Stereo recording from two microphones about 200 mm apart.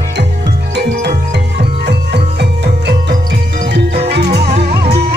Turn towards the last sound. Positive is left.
turn(degrees=-55)  # may be behind; listen again after turning